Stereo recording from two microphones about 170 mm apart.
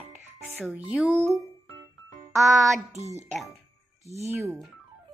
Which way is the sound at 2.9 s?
40° right (ahead or behind).